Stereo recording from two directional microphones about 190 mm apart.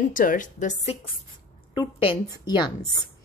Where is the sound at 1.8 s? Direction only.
25° left (ahead or behind).